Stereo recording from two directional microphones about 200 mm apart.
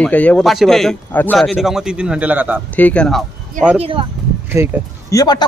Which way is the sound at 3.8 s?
25° right (ahead or behind).